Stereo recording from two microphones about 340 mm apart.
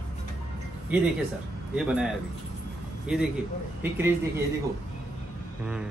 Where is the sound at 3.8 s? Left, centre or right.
Centre.